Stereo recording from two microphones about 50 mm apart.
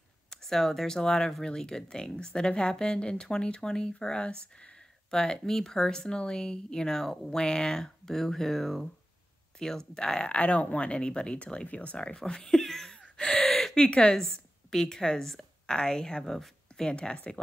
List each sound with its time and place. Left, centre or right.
0.3 s speech: centre; by 12.2 s left
12.2 s speech: centre
12.9 s gasp: centre
13.8 s speech: centre
14.2 s a woman's voice: centre
16.9 s speech: centre